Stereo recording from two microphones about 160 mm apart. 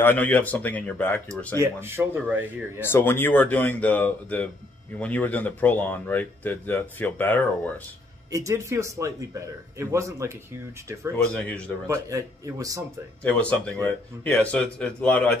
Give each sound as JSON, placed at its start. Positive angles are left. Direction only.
{"t": 0.0, "sound": "speech", "side_deg": 10}
{"t": 1.6, "sound": "speech", "side_deg": -15}
{"t": 2.8, "sound": "speech", "side_deg": 15}
{"t": 8.3, "sound": "speech", "side_deg": -20}
{"t": 11.1, "sound": "speech", "side_deg": 5}
{"t": 11.9, "sound": "speech", "side_deg": -20}
{"t": 13.2, "sound": "speech", "side_deg": 10}